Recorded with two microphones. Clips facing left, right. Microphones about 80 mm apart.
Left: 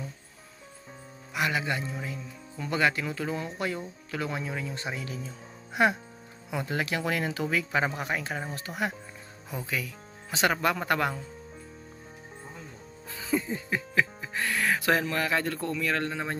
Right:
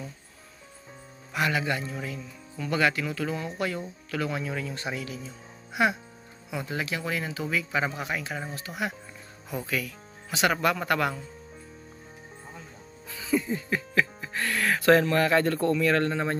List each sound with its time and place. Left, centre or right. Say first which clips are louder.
1.3 s speech: right 2 dB; centre
5.0 s speech: even; left
7.5 s speech: right 1 dB; left
9.7 s speech: even; left
13.1 s speech: right 2 dB; left; by 16.3 s centre